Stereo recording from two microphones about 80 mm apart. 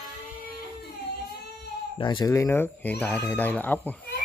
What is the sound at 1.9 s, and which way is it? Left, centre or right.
Speech, left.